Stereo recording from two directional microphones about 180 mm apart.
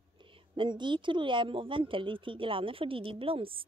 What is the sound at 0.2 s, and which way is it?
Speech, 25° right (ahead or behind).